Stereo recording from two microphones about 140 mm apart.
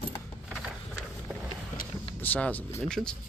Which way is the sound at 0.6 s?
5° right (ahead or behind).